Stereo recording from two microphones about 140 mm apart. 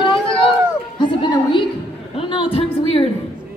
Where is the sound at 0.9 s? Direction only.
35° left (ahead or behind).